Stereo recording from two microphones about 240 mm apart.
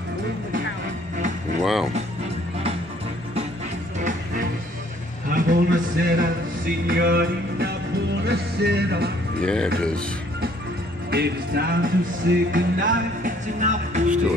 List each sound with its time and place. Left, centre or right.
1.6 s speech: centre
5.3 s music: right
9.4 s speech: centre
11.1 s music: right